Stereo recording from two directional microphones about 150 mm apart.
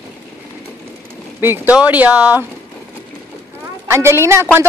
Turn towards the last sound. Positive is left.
turn(degrees=-15)  # may be behind; listen again after turning